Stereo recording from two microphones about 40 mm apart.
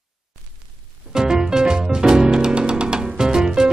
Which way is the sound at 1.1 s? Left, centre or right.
Centre.